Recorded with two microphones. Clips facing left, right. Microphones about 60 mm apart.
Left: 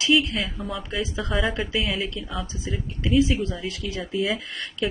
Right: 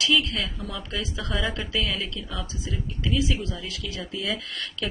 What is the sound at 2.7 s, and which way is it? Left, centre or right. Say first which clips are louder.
Speech: left 4 dB; left.